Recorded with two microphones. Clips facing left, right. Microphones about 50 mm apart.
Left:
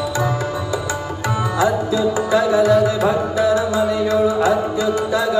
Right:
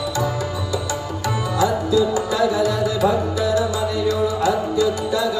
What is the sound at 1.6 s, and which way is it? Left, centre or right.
Music, left.